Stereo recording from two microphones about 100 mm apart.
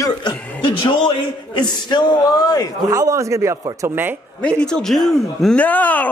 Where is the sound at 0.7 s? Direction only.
60° left (ahead or behind); by 2.6 s 40° left (ahead or behind).